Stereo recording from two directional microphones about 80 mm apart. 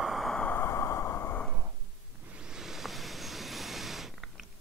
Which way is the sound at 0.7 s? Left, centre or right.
Left.